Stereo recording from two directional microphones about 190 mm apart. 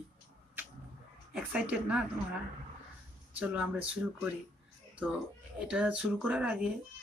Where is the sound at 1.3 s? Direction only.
5° right (ahead or behind).